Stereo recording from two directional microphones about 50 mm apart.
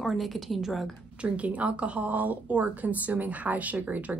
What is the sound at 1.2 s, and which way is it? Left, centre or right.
A woman's voice, right.